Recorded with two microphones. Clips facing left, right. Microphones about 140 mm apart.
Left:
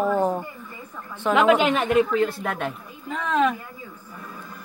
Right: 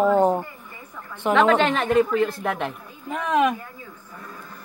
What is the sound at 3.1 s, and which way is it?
Speech, 15° right (ahead or behind).